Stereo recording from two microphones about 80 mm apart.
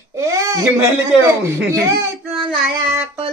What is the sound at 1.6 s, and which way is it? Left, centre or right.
Speech, right.